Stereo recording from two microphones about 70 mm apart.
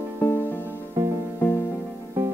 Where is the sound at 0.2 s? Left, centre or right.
Left.